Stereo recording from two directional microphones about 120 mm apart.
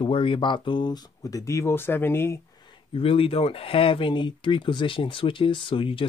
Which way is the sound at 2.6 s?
45° left (ahead or behind).